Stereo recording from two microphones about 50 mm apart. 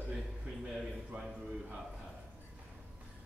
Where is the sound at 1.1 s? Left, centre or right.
Right.